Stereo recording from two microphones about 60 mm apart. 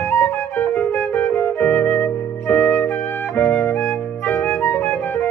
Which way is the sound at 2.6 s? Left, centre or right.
Left.